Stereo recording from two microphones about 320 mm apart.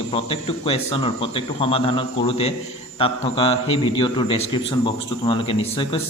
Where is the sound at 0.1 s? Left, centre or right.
Centre.